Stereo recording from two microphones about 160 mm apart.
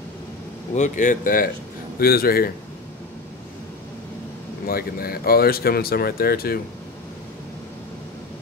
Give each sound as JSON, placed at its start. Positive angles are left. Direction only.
{"t": 0.7, "sound": "speech", "side_deg": 50}
{"t": 2.0, "sound": "speech", "side_deg": 70}
{"t": 4.6, "sound": "speech", "side_deg": 70}